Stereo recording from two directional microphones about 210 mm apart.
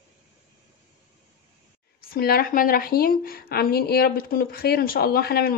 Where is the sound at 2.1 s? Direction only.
45° left (ahead or behind).